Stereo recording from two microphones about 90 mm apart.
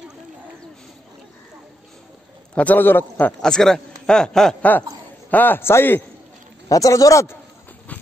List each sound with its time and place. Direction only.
2.5 s a man's voice: 15° left (ahead or behind)
3.4 s a man's voice: 5° left (ahead or behind)
5.3 s a man's voice: 20° left (ahead or behind)
6.7 s speech: 40° left (ahead or behind)
7.9 s a sound: 15° left (ahead or behind)